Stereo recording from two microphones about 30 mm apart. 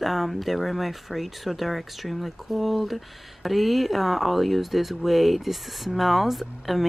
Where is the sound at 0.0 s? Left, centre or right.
Centre.